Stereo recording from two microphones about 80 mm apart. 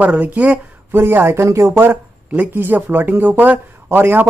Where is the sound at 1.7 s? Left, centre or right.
Right.